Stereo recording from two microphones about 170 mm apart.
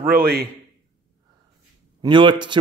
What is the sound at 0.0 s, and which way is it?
Speech, 60° right (ahead or behind).